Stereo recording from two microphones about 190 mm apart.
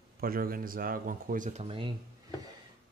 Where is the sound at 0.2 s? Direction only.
50° right (ahead or behind).